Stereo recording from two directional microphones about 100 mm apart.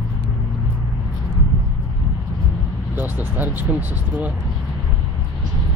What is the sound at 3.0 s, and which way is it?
Vehicle, 20° right (ahead or behind).